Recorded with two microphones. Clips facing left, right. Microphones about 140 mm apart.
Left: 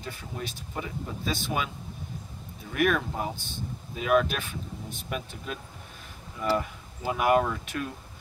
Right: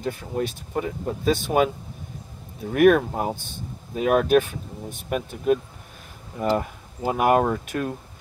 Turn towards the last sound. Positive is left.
turn(degrees=-45)  # may be behind; listen again after turning